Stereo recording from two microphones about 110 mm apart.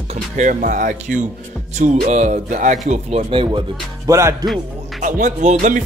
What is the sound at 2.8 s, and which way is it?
Speech, 80° right.